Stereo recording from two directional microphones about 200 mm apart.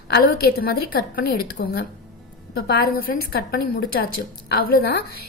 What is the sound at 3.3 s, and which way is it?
Speech, 50° left (ahead or behind).